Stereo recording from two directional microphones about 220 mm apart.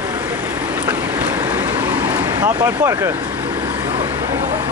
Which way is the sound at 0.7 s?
5° right (ahead or behind).